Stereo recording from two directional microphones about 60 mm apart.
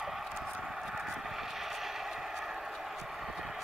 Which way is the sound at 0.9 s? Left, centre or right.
Centre.